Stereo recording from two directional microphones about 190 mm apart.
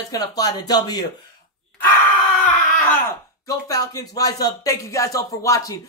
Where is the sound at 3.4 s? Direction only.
20° left (ahead or behind).